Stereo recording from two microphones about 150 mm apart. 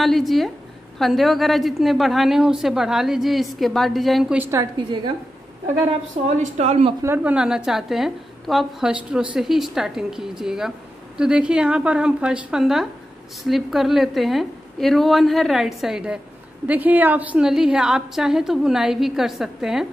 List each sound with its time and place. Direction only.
0.0 s a woman's voice: centre (ahead or behind)
4.7 s a woman's voice: 30° right (ahead or behind)
6.3 s a woman's voice: 50° right (ahead or behind)
7.0 s a woman's voice: 15° right (ahead or behind)
7.3 s a woman's voice: 5° right (ahead or behind)